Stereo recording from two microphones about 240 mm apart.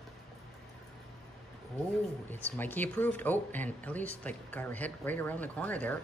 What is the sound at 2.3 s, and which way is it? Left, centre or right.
Speech, centre.